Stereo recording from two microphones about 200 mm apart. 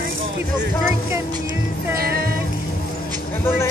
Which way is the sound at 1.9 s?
50° right (ahead or behind).